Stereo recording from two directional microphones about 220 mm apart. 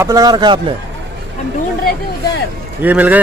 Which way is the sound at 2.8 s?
5° right (ahead or behind).